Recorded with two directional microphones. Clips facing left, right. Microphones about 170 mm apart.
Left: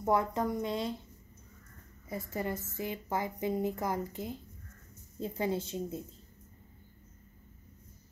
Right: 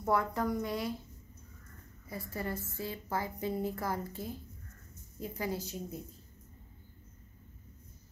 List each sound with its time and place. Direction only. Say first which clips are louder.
0.0 s speech: left 2 dB; 20° left (ahead or behind)
2.0 s a woman's voice: left 3 dB; 20° left (ahead or behind)